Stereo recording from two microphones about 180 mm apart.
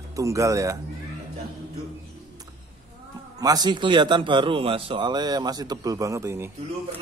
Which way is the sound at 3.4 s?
20° right (ahead or behind).